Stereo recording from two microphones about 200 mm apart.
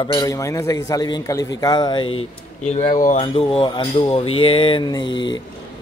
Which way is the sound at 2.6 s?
35° left (ahead or behind).